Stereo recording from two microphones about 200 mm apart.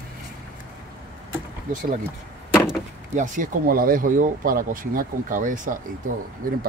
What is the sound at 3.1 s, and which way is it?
Speech, 40° right (ahead or behind).